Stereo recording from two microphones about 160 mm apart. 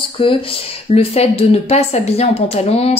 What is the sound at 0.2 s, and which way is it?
A woman's voice, 35° left (ahead or behind).